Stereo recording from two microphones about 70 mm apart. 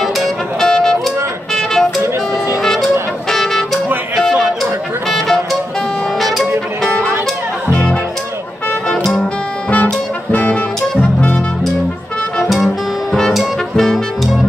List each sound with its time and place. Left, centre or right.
0.0 s music: centre
4.1 s a sound: centre
5.0 s music: centre
9.0 s music: centre
12.4 s music: centre